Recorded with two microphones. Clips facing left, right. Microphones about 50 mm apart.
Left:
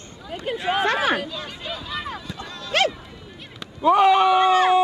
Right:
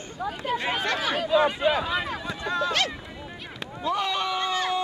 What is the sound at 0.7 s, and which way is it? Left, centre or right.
Speech, left.